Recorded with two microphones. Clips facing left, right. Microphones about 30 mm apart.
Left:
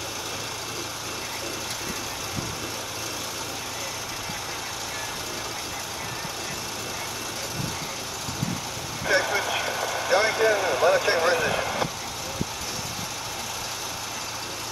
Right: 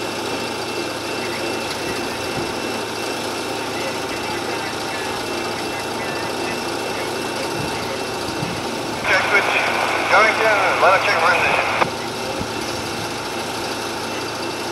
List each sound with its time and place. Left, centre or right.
9.0 s vehicle: right